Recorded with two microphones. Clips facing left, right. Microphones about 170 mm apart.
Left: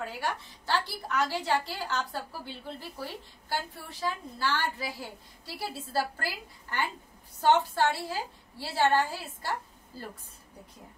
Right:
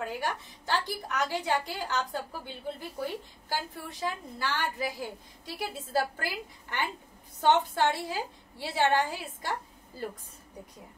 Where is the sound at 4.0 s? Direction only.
15° right (ahead or behind).